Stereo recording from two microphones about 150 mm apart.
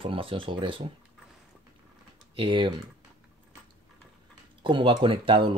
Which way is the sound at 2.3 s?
35° right (ahead or behind).